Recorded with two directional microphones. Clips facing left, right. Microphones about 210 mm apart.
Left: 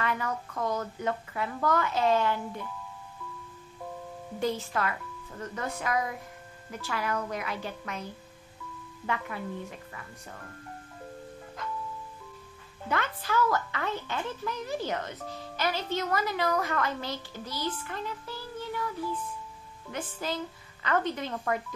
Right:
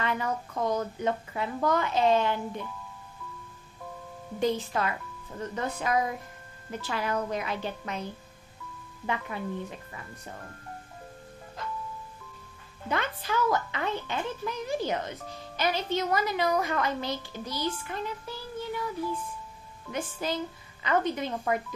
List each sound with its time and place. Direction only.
0.0 s speech: 20° right (ahead or behind)
4.4 s speech: 20° right (ahead or behind)
12.8 s a child's voice: 20° right (ahead or behind)
19.9 s a child's voice: 15° right (ahead or behind)